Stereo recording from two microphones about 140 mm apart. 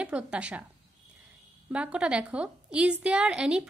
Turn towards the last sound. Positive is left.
turn(degrees=-5)  # may be behind; listen again after turning